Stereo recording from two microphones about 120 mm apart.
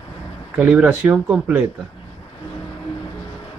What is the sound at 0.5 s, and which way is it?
Speech, 10° right (ahead or behind).